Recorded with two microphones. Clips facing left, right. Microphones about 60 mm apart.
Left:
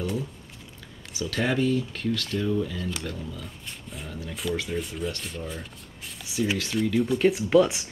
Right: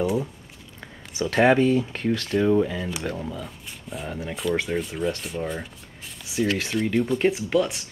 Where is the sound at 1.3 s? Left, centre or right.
Right.